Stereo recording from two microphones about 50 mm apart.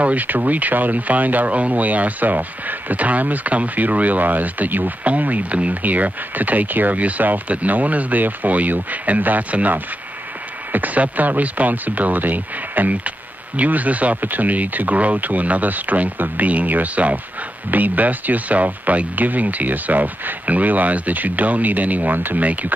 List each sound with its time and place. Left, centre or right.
0.0 s speech: right